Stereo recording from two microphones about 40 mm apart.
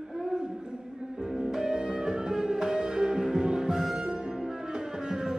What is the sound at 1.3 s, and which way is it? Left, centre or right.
Music, centre.